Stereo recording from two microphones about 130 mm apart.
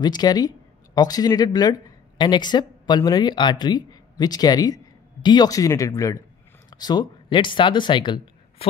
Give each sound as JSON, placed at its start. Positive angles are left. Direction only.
{"t": 0.0, "sound": "speech", "side_deg": 30}